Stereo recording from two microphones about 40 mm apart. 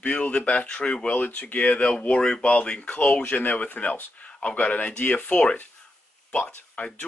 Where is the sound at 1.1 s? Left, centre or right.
Left.